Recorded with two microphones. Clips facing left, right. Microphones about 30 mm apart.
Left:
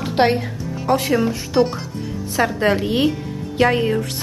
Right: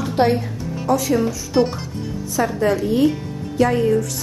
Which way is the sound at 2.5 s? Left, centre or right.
Left.